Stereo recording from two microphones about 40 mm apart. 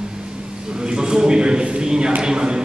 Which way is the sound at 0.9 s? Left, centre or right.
Centre.